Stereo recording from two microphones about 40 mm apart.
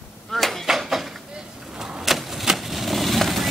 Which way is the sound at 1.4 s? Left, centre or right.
Centre.